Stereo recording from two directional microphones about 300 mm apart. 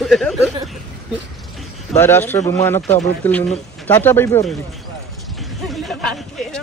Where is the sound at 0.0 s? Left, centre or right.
Centre.